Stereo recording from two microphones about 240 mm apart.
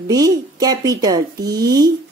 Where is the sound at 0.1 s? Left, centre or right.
Centre.